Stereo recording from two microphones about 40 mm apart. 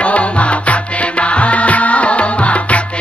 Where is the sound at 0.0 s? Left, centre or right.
Left.